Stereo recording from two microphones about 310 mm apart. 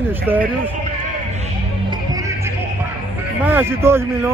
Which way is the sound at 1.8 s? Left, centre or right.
Centre.